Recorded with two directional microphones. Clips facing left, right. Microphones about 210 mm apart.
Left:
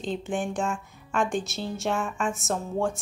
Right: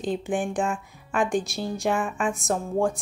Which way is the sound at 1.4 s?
15° right (ahead or behind).